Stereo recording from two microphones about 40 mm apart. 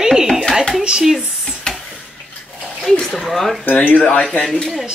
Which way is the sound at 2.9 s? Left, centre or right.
Centre.